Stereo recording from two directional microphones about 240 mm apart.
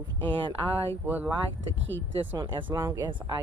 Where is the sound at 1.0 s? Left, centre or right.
Centre.